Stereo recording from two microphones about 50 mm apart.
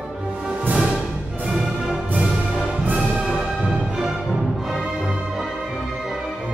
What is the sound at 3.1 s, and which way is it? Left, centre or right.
Music, right.